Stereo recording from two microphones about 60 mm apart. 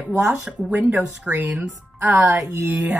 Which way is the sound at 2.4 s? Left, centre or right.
Right.